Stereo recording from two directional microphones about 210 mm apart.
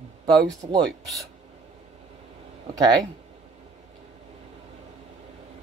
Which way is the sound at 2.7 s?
20° right (ahead or behind).